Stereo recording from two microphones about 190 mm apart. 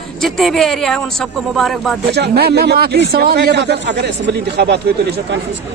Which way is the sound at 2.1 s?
60° right (ahead or behind).